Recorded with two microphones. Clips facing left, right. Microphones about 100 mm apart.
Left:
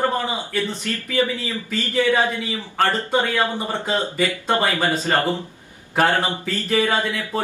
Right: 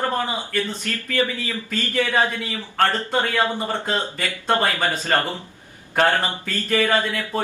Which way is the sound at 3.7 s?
15° left (ahead or behind).